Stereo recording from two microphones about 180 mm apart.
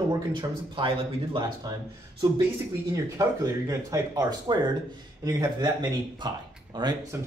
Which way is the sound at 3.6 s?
20° right (ahead or behind).